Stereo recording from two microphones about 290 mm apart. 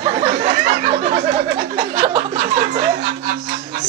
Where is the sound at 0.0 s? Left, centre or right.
Right.